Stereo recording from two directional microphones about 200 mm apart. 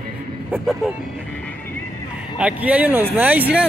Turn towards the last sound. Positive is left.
turn(degrees=-5)  # may be behind; listen again after turning